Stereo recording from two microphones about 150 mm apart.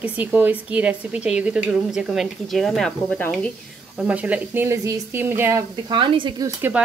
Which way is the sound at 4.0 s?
10° right (ahead or behind).